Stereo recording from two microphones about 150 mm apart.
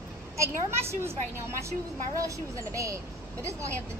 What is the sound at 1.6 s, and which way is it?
Speech, 20° right (ahead or behind).